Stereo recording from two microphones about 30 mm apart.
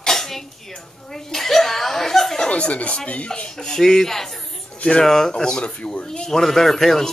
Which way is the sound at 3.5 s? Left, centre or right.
Centre.